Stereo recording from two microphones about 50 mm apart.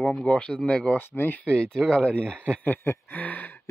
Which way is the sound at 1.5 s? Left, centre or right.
Centre.